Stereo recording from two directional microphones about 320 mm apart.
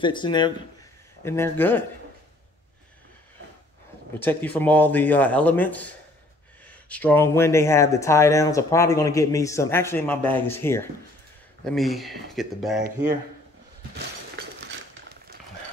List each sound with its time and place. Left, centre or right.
0.0 s speech: centre
4.2 s speech: centre
14.3 s cutlery: right